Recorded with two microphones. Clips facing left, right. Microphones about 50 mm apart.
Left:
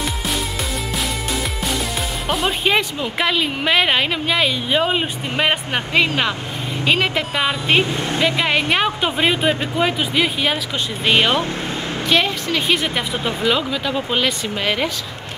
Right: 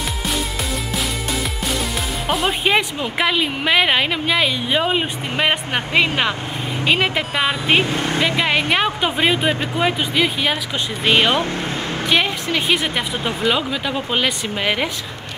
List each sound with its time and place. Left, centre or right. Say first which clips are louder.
2.2 s speech: even; centre
12.0 s a sound: left 1 dB; centre
12.8 s speech: even; centre